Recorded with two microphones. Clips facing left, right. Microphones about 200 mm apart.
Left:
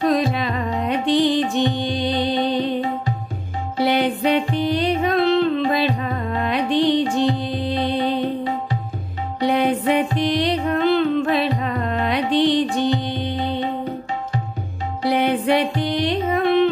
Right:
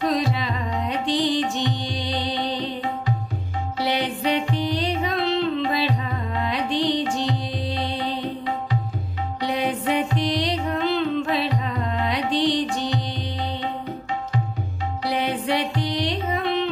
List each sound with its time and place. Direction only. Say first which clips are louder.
0.0 s music: left 4 dB; 55° left (ahead or behind)
3.7 s music: left 6 dB; 55° left (ahead or behind)
9.4 s music: left 6 dB; 55° left (ahead or behind)
15.0 s music: left 6 dB; 55° left (ahead or behind)